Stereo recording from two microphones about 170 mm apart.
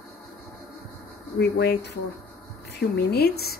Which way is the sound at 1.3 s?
70° left (ahead or behind).